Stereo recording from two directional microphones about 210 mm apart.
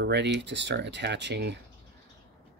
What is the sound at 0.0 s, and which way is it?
Speech, 55° right (ahead or behind).